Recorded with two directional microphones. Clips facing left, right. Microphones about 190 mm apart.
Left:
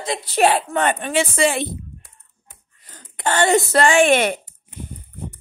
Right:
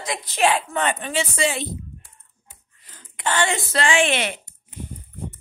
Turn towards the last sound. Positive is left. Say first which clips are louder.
# left 6 dB
turn(degrees=50)  # may be behind; listen again after turning